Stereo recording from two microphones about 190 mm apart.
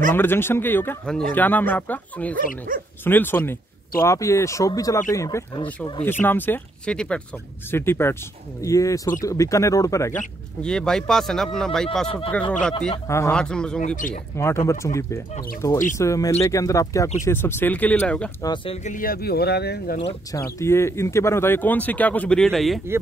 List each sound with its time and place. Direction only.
0.1 s speech: 10° left (ahead or behind)
10.6 s speech: 5° left (ahead or behind)
13.7 s speech: 45° left (ahead or behind)
14.3 s speech: 15° left (ahead or behind)
18.4 s speech: 25° left (ahead or behind)
18.9 s speech: 50° left (ahead or behind)
20.5 s speech: 15° left (ahead or behind)